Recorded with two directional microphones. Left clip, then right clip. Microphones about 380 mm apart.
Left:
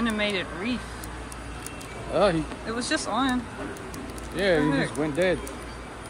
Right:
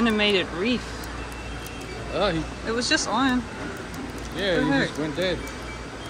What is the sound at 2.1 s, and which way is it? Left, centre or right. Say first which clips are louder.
Speech: left 2 dB; centre.